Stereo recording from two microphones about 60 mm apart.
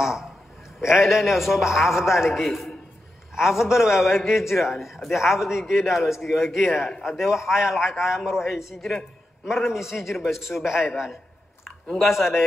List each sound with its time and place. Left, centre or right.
0.0 s a man's voice: centre